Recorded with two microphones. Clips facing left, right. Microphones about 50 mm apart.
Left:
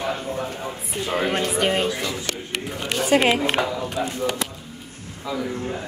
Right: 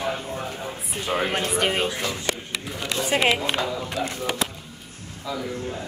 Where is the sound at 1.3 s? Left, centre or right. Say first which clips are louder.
Left 2 dB; centre.